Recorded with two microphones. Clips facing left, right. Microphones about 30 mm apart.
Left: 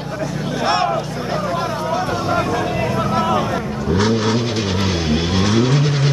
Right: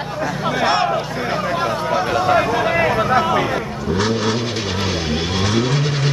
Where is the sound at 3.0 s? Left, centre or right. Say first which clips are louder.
Right 2 dB; centre.